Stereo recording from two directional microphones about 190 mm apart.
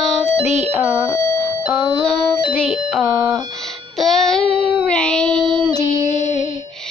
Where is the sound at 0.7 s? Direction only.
10° right (ahead or behind).